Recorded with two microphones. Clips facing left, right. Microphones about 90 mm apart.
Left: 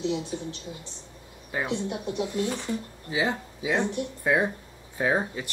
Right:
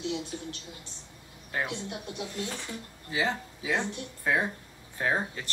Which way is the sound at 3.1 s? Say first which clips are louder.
Left 3 dB; 15° left (ahead or behind).